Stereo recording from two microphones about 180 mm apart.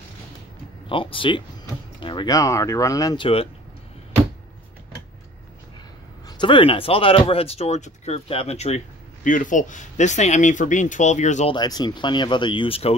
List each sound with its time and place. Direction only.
0.8 s speech: 30° left (ahead or behind)
6.2 s speech: 25° left (ahead or behind); by 11.5 s 40° left (ahead or behind)
11.5 s speech: 25° left (ahead or behind)